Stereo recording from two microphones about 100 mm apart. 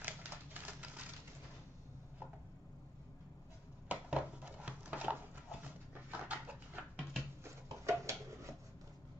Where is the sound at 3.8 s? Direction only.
15° right (ahead or behind).